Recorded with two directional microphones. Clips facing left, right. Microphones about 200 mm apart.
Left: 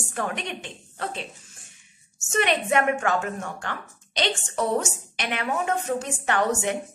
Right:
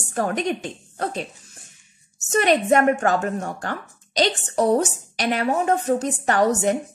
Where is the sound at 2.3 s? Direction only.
40° right (ahead or behind).